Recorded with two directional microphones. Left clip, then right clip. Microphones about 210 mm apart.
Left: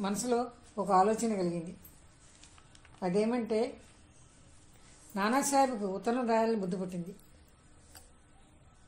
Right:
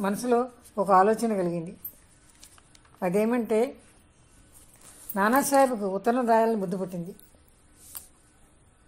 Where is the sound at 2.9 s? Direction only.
30° right (ahead or behind).